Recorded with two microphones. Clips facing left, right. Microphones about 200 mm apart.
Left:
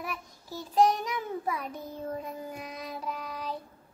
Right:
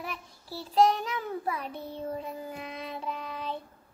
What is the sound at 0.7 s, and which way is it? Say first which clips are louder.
Speech: right 1 dB; 10° left (ahead or behind).